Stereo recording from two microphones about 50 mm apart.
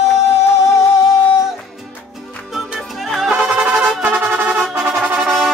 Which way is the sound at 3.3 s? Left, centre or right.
Centre.